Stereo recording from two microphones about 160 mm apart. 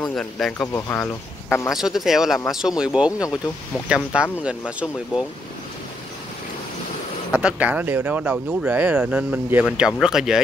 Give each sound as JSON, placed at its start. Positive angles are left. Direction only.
{"t": 0.1, "sound": "speech", "side_deg": 5}
{"t": 1.7, "sound": "speech", "side_deg": 0}
{"t": 3.1, "sound": "speech", "side_deg": 20}
{"t": 3.9, "sound": "speech", "side_deg": -5}
{"t": 7.3, "sound": "speech", "side_deg": -10}